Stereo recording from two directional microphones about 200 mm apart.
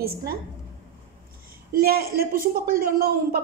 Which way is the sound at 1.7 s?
50° right (ahead or behind).